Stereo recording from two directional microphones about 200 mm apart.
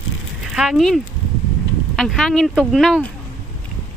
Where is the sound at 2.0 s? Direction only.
Centre (ahead or behind).